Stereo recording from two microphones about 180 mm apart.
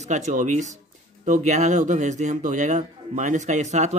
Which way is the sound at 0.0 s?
40° right (ahead or behind).